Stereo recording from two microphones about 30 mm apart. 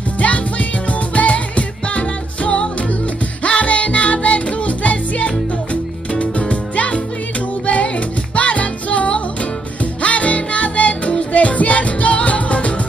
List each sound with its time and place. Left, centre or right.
0.2 s music: left